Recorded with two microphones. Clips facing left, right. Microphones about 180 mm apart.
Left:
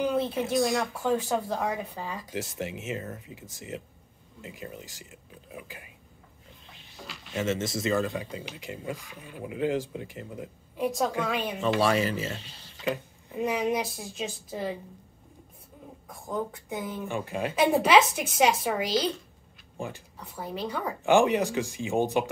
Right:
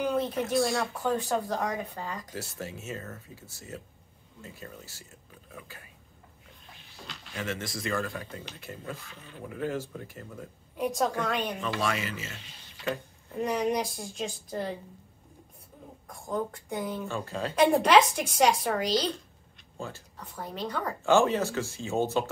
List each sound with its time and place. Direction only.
0.1 s speech: 10° left (ahead or behind)
7.3 s speech: 25° left (ahead or behind)
10.8 s speech: centre (ahead or behind)
11.6 s speech: 30° left (ahead or behind)
12.8 s speech: 10° left (ahead or behind)
16.1 s speech: 5° left (ahead or behind)
17.0 s speech: 15° left (ahead or behind)
17.6 s speech: 5° left (ahead or behind)